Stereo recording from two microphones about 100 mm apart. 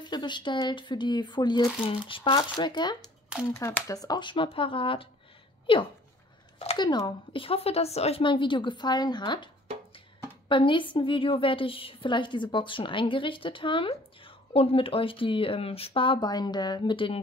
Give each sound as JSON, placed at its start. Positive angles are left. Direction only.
{"t": 0.0, "sound": "a woman's voice", "side_deg": 50}
{"t": 1.9, "sound": "a woman's voice", "side_deg": 60}
{"t": 2.3, "sound": "a woman's voice", "side_deg": 50}
{"t": 3.5, "sound": "a woman's voice", "side_deg": 30}
{"t": 6.8, "sound": "a woman's voice", "side_deg": 45}
{"t": 7.3, "sound": "a woman's voice", "side_deg": 70}
{"t": 10.5, "sound": "a woman's voice", "side_deg": 55}